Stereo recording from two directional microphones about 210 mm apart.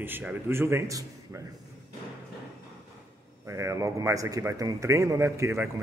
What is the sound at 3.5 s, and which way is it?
A man's voice, 15° right (ahead or behind).